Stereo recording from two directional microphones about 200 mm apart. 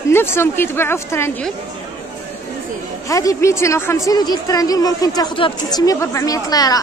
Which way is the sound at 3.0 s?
15° left (ahead or behind).